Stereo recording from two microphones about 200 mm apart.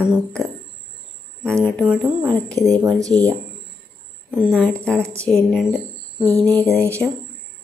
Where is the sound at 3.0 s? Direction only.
20° right (ahead or behind).